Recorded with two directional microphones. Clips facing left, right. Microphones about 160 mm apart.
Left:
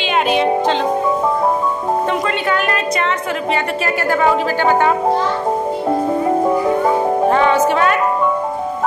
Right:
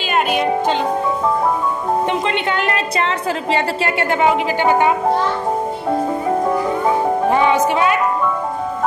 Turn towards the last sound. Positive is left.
turn(degrees=-10)  # may be behind; listen again after turning